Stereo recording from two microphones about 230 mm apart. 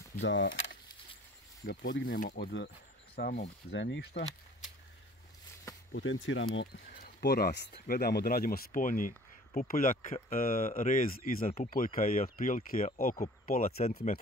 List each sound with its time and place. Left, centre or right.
0.2 s speech: left
5.9 s speech: left